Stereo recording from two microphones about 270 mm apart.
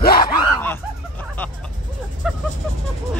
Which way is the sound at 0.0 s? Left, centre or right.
Left.